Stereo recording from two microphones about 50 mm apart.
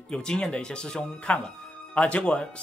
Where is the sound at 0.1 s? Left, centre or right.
Centre.